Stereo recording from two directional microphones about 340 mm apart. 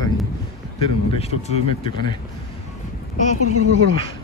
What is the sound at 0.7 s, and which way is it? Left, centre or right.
Speech, centre.